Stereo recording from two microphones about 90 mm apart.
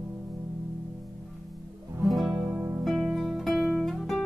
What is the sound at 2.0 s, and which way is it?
Music, centre (ahead or behind).